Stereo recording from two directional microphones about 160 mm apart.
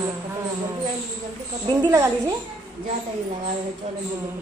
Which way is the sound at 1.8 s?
20° right (ahead or behind).